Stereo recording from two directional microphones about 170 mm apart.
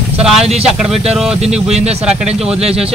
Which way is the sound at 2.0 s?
5° right (ahead or behind).